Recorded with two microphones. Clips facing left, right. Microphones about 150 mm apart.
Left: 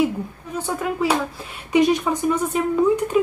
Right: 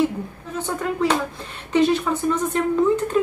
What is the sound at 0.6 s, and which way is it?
Speech, 10° left (ahead or behind).